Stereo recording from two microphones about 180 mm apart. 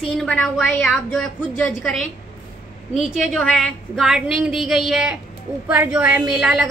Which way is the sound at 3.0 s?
Centre (ahead or behind).